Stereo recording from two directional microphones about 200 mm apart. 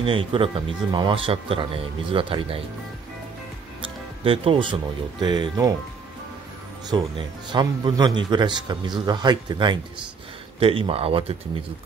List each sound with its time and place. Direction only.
0.0 s speech: 25° right (ahead or behind)
3.8 s music: 25° right (ahead or behind)
5.2 s speech: 20° right (ahead or behind)
6.9 s speech: 20° right (ahead or behind)